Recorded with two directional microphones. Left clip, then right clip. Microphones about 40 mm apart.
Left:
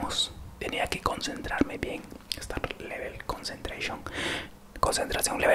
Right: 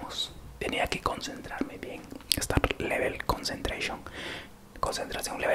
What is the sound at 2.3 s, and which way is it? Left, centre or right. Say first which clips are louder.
Speech: right 7 dB; right.